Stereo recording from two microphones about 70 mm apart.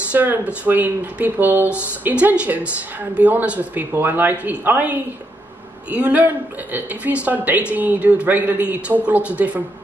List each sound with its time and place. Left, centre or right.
0.1 s speech: right